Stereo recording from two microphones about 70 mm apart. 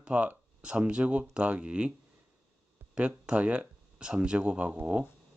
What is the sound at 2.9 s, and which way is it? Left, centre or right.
Speech, centre.